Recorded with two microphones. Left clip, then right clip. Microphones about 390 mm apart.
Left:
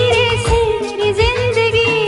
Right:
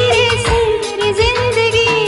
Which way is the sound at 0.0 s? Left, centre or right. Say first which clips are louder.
Right 1 dB; left.